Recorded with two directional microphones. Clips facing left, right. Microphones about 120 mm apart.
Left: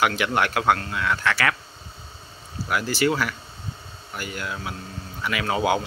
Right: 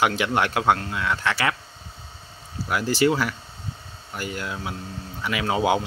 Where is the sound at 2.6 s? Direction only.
25° right (ahead or behind).